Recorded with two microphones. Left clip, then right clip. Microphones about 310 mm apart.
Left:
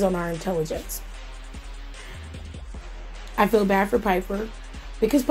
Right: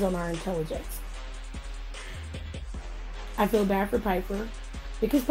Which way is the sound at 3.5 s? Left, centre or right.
Left.